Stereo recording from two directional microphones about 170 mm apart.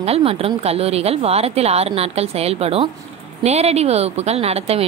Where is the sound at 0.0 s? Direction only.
35° right (ahead or behind).